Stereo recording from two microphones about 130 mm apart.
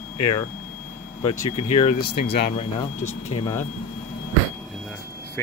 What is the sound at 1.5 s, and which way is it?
Speech, 50° left (ahead or behind).